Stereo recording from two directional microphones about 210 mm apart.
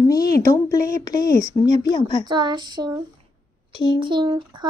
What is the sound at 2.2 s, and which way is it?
Speech, 20° right (ahead or behind).